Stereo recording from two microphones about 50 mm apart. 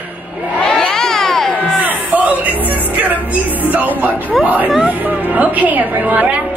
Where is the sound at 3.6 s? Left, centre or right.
Right.